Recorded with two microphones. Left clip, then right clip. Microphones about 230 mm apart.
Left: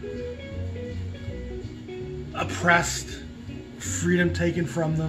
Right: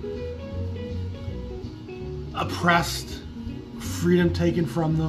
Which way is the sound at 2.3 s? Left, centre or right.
Centre.